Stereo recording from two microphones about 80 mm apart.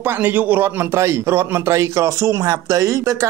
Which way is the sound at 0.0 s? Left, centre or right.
Right.